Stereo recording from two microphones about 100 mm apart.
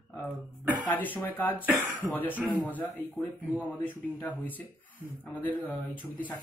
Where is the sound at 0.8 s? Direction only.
20° left (ahead or behind).